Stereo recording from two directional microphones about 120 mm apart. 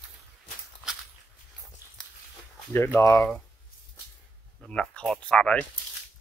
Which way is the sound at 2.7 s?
20° left (ahead or behind).